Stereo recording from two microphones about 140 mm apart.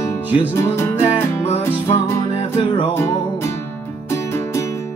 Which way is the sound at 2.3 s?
45° left (ahead or behind).